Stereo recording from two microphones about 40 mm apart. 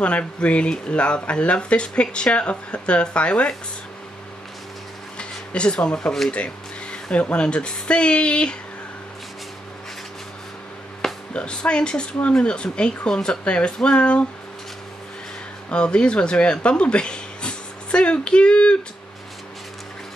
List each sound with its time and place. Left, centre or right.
0.0 s speech: left
5.1 s a sound: left
7.3 s speech: left
11.0 s music: centre
11.3 s speech: left
15.7 s speech: left